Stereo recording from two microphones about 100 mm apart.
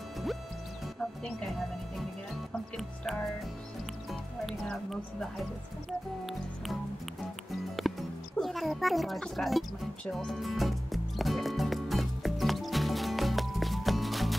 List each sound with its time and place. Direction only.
4.1 s speech: centre (ahead or behind)
7.8 s music: centre (ahead or behind)